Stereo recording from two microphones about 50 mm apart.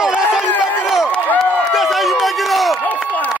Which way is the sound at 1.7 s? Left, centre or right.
Centre.